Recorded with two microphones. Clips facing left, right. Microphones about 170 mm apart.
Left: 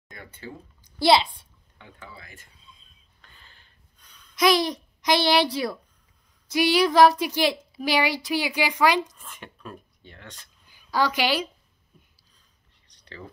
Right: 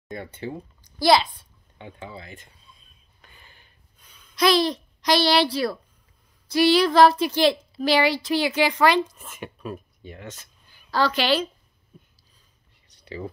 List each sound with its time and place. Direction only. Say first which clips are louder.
0.1 s speech: right 8 dB; 20° right (ahead or behind)
0.9 s a woman's voice: right 1 dB; 25° left (ahead or behind)
1.8 s speech: right 7 dB; 20° right (ahead or behind)
3.2 s gasp: right 2 dB; 10° right (ahead or behind)
4.4 s speech: right 1 dB; 15° left (ahead or behind)
9.1 s speech: right 6 dB; 10° right (ahead or behind)
10.7 s a woman's voice: right 1 dB; 15° left (ahead or behind)